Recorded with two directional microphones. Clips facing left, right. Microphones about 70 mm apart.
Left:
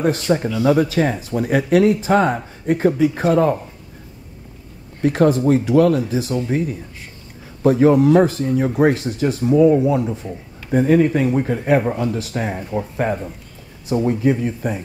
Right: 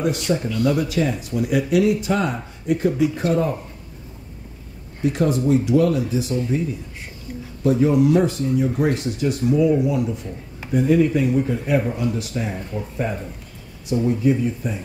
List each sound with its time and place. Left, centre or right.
0.0 s speech: left
3.3 s speech: left
5.0 s speech: left
7.7 s speech: left